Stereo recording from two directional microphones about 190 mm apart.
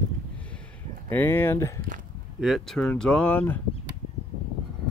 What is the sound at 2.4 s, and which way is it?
Speech, centre (ahead or behind).